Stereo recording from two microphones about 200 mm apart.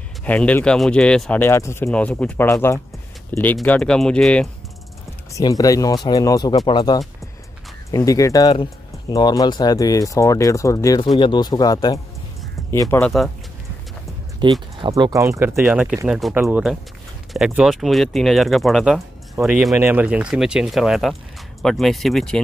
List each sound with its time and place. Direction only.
0.2 s speech: 5° left (ahead or behind)
5.3 s speech: 15° left (ahead or behind)
14.4 s speech: 20° right (ahead or behind); by 22.4 s centre (ahead or behind)